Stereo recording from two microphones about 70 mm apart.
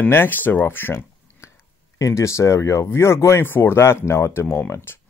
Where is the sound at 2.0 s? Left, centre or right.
Left.